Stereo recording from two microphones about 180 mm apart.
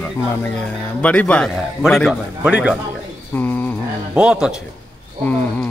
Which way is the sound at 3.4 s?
10° left (ahead or behind).